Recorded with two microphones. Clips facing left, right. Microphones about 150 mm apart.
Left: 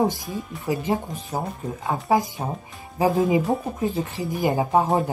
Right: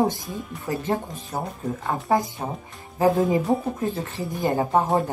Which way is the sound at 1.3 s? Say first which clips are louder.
Even; 10° left (ahead or behind).